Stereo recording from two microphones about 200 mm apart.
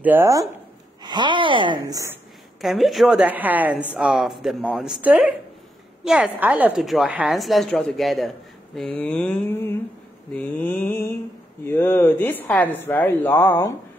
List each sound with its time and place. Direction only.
0.0 s a woman's voice: 10° right (ahead or behind)
2.6 s a woman's voice: centre (ahead or behind)